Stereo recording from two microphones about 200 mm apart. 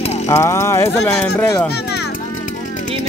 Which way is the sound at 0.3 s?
15° left (ahead or behind).